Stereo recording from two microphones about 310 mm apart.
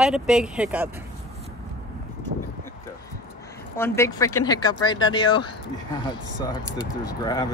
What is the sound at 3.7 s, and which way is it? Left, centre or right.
Speech, centre.